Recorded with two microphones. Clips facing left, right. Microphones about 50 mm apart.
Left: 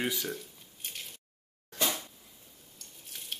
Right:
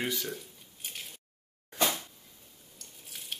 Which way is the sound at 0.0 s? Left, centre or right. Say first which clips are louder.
Left 1 dB; centre.